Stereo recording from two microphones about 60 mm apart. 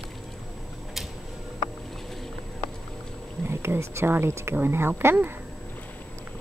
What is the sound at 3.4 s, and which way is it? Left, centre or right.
Speech, right.